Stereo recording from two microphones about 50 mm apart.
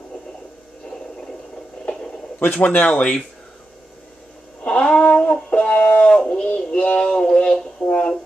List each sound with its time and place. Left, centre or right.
2.4 s speech: left
2.9 s speech: centre
4.6 s music: left
6.2 s child singing: left
7.0 s a sound: centre